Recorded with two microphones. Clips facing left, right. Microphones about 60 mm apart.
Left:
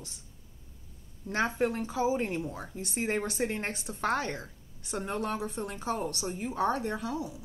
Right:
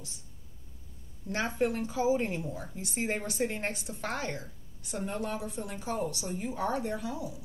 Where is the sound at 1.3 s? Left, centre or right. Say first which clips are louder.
Left 1 dB; left.